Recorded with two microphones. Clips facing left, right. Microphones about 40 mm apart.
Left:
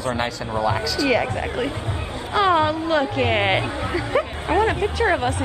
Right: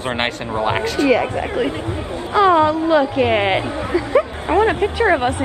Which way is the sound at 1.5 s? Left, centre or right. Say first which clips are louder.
Right 5 dB; right.